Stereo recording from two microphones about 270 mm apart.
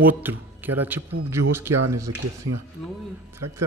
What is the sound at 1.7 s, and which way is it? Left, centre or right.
Speech, right.